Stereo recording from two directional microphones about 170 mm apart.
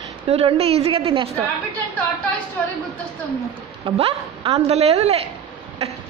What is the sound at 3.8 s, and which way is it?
A woman's voice, 35° right (ahead or behind).